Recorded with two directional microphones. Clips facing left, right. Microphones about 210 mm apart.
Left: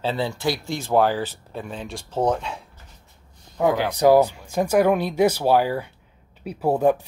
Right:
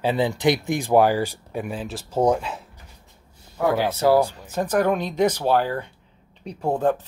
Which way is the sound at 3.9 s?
15° left (ahead or behind).